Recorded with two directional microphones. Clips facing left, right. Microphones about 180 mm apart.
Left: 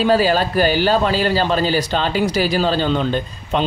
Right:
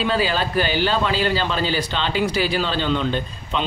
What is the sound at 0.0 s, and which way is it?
A man's voice, 40° left (ahead or behind).